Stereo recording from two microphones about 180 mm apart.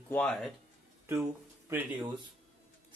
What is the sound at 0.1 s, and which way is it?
Speech, 5° left (ahead or behind).